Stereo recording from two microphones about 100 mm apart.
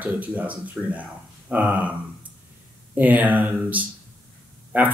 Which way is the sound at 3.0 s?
15° right (ahead or behind).